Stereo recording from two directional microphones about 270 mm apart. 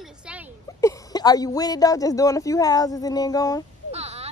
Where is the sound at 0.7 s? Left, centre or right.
Centre.